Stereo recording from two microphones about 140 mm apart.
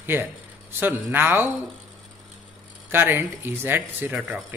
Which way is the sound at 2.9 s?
15° right (ahead or behind).